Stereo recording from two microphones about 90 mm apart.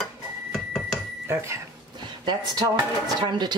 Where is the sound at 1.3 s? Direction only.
30° right (ahead or behind).